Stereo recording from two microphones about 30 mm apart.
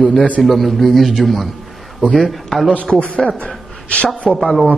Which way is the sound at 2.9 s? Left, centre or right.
Left.